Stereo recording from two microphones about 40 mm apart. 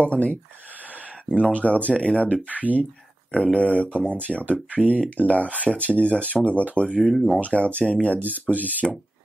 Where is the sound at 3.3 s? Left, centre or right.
Left.